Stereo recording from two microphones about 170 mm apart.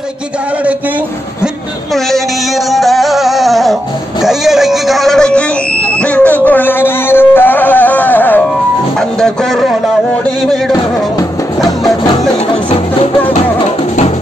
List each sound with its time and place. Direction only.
2.0 s music: centre (ahead or behind)
4.2 s a sound: centre (ahead or behind)
8.9 s music: 5° left (ahead or behind)
12.6 s music: 35° left (ahead or behind)